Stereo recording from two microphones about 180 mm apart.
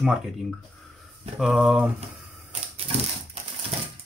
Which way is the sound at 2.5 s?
30° right (ahead or behind).